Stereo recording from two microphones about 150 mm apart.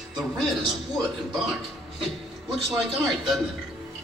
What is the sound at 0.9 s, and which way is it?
A man's voice, centre (ahead or behind).